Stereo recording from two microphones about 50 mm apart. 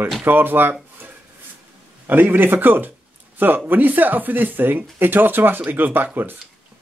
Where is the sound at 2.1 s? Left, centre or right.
Right.